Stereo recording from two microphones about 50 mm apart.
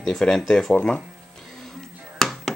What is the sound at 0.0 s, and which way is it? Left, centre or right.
Speech, centre.